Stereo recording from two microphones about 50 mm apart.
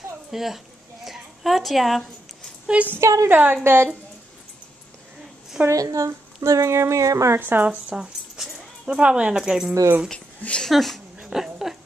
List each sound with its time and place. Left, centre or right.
0.3 s speech: centre
1.0 s a sound: centre
2.6 s speech: right
3.0 s a woman's voice: right
3.3 s a woman's voice: right
3.6 s speech: right
5.7 s a woman's voice: right
7.3 s speech: right
7.9 s a sound: centre
8.8 s speech: right
10.7 s speech: centre
11.1 s a sound: centre